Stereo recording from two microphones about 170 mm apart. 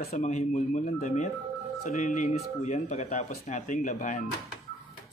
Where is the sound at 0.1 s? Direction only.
40° left (ahead or behind).